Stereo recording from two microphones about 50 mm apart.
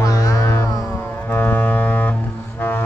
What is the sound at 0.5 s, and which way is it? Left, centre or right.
Music, left.